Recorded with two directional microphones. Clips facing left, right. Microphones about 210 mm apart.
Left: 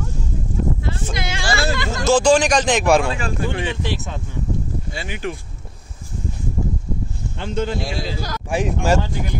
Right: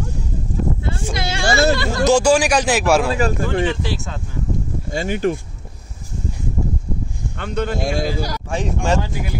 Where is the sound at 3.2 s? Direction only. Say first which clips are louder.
Right 5 dB; 45° right (ahead or behind).